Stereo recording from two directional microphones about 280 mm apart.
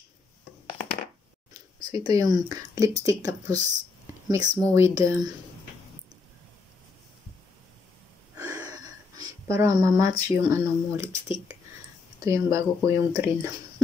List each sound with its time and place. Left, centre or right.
1.5 s speech: centre
8.4 s a sound: centre
10.1 s speech: centre